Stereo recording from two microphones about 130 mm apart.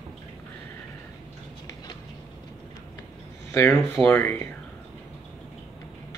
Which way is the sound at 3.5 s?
20° left (ahead or behind).